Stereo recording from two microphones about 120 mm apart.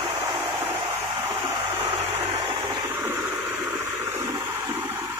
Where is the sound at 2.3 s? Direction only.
30° right (ahead or behind).